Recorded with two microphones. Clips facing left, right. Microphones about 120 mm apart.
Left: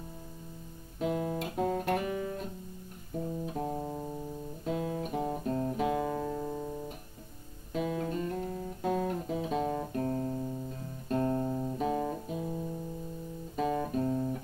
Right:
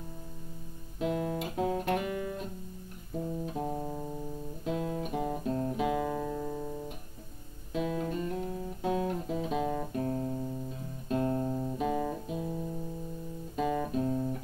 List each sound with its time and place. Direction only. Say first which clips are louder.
0.9 s music: even; centre (ahead or behind)
3.4 s music: even; centre (ahead or behind)
7.7 s music: even; centre (ahead or behind)
11.9 s guitar: even; 10° left (ahead or behind)
12.3 s music: even; centre (ahead or behind)